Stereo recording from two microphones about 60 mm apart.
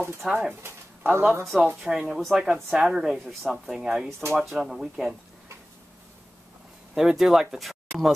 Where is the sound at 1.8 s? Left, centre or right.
Centre.